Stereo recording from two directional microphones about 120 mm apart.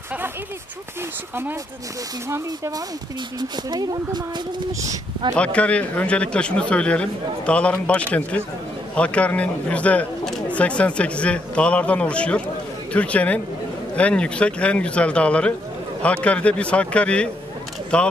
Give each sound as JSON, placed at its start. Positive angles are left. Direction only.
{"t": 2.2, "sound": "speech", "side_deg": -25}
{"t": 3.3, "sound": "speech", "side_deg": -35}
{"t": 5.3, "sound": "speech", "side_deg": 10}